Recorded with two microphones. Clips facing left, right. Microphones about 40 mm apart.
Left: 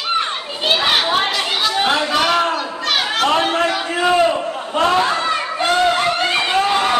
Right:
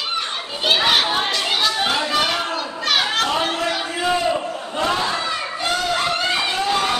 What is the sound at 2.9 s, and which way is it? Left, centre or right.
Children playing, centre.